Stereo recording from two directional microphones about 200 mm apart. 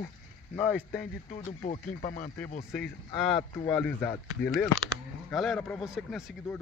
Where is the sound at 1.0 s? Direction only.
35° left (ahead or behind).